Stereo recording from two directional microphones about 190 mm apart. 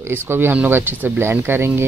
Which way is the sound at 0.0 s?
10° right (ahead or behind).